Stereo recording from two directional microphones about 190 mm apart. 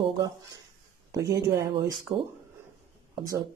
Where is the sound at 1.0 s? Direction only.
20° right (ahead or behind).